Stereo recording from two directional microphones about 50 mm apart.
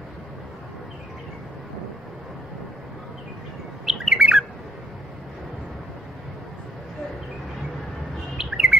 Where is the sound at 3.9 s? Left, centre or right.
Centre.